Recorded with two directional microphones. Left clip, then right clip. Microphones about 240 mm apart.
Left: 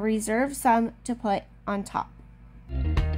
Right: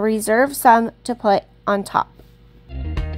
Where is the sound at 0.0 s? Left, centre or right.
Right.